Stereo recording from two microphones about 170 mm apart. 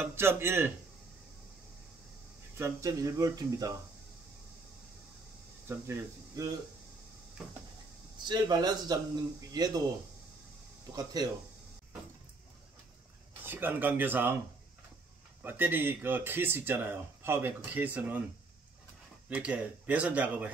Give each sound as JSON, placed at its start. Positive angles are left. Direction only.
{"t": 0.0, "sound": "speech", "side_deg": -15}
{"t": 2.5, "sound": "a man's voice", "side_deg": -15}
{"t": 5.7, "sound": "speech", "side_deg": -15}
{"t": 8.3, "sound": "a man's voice", "side_deg": -25}
{"t": 10.9, "sound": "a man's voice", "side_deg": -20}
{"t": 13.5, "sound": "speech", "side_deg": -10}
{"t": 15.4, "sound": "speech", "side_deg": -10}
{"t": 19.2, "sound": "speech", "side_deg": -5}